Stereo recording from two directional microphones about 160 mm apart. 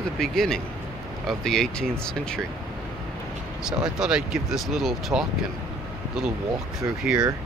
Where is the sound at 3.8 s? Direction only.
5° right (ahead or behind).